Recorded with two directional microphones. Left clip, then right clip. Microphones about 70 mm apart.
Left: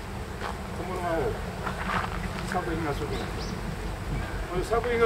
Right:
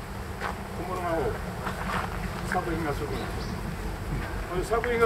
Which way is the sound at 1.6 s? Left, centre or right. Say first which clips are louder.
Left 2 dB; right.